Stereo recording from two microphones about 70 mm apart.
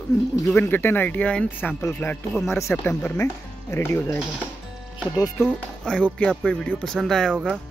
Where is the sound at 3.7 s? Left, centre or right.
Left.